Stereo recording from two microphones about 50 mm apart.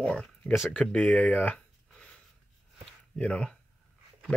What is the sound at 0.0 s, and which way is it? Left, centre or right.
Speech, left.